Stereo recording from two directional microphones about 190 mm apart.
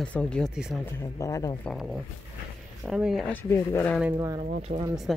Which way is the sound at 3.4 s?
15° left (ahead or behind).